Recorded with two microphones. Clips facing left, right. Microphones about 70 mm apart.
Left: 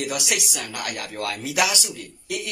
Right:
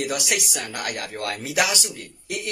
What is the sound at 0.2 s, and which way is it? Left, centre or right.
Speech, right.